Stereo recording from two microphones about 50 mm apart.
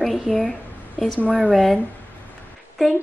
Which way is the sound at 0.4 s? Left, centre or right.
Centre.